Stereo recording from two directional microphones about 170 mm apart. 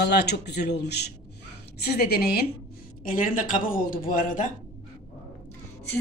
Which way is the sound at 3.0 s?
55° left (ahead or behind).